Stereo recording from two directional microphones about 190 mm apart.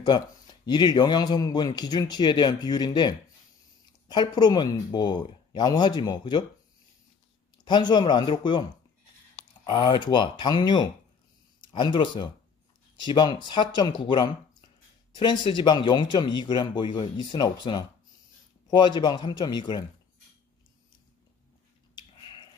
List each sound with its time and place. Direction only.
0.7 s speech: 25° left (ahead or behind)
7.5 s speech: 25° left (ahead or behind)
9.7 s speech: 25° left (ahead or behind)
21.9 s a sound: 25° left (ahead or behind)